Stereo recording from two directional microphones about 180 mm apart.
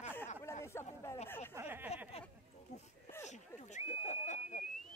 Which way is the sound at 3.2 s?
40° left (ahead or behind).